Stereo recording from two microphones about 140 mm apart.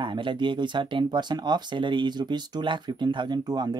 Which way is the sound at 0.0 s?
35° right (ahead or behind).